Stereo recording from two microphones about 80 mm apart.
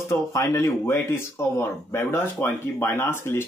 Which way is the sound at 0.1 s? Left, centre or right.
Left.